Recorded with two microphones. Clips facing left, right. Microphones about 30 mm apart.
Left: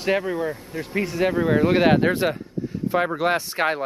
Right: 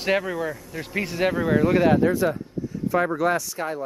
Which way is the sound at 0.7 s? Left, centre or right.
Centre.